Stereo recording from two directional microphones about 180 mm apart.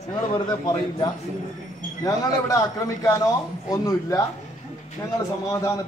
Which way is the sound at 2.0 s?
20° left (ahead or behind).